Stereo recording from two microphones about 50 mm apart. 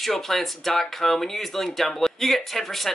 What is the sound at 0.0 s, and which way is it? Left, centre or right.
Speech, centre.